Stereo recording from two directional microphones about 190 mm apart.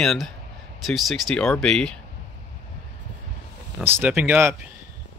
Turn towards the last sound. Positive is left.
turn(degrees=-15)  # may be behind; listen again after turning